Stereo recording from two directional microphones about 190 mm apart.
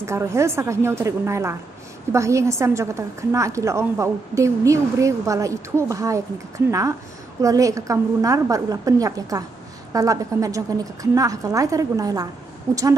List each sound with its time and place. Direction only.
0.0 s a woman's voice: 15° right (ahead or behind)
7.4 s a woman's voice: 15° right (ahead or behind)